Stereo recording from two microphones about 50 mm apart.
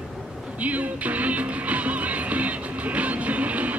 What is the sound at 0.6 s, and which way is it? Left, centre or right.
Music, right.